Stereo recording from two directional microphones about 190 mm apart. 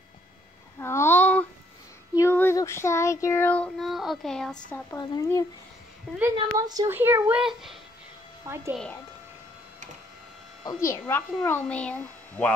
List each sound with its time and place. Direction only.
0.7 s a sound: 15° left (ahead or behind)
2.1 s speech: 15° left (ahead or behind)
4.9 s speech: 20° left (ahead or behind)
6.3 s speech: 20° right (ahead or behind); by 7.7 s 5° right (ahead or behind)
8.5 s speech: 15° right (ahead or behind)
10.6 s speech: 20° left (ahead or behind)